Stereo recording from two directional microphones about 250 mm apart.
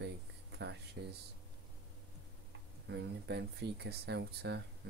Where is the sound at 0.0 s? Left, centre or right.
Right.